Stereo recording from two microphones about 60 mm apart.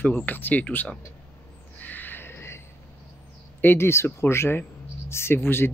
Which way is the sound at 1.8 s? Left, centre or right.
Left.